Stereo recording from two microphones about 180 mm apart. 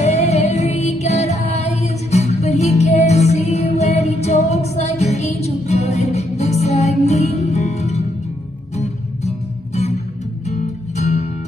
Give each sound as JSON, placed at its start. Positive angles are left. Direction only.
{"t": 0.0, "sound": "music", "side_deg": 35}